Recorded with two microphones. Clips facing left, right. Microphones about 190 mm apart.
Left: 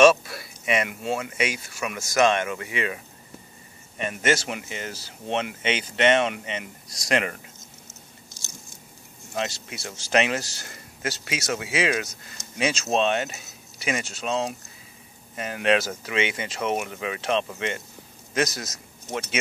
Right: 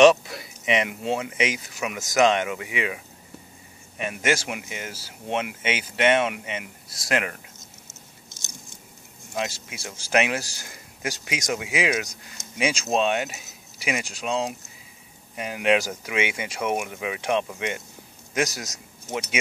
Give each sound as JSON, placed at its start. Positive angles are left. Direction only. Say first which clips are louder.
{"t": 0.0, "sound": "speech", "louder": "right 1 dB", "side_deg": -20}
{"t": 4.0, "sound": "speech", "louder": "left 1 dB", "side_deg": -10}
{"t": 9.3, "sound": "a man's voice", "louder": "even", "side_deg": -10}